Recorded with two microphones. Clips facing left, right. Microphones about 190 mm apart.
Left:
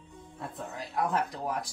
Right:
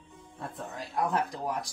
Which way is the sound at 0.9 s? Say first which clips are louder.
Even; centre (ahead or behind).